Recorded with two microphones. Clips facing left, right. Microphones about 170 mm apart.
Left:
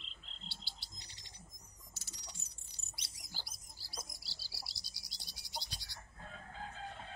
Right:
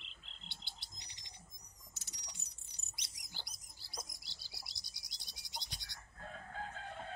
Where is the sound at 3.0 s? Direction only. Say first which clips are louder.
Left 1 dB; 20° right (ahead or behind).